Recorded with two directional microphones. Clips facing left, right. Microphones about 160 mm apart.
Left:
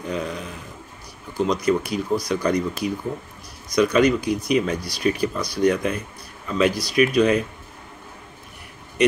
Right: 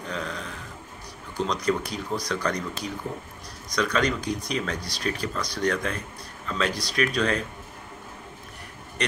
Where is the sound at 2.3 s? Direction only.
15° left (ahead or behind).